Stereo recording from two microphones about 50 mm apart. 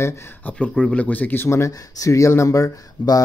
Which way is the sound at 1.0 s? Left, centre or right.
Left.